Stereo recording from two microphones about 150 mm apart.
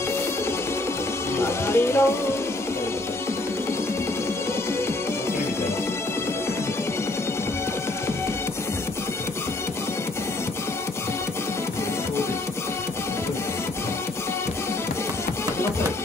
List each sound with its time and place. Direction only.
1.4 s speech: 15° left (ahead or behind)